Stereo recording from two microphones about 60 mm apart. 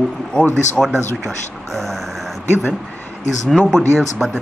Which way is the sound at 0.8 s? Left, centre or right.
Centre.